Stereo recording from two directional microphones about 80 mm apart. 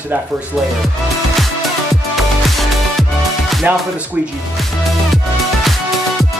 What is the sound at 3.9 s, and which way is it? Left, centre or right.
Speech, centre.